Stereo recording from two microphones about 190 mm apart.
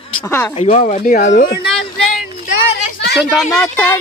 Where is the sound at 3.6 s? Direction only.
10° left (ahead or behind).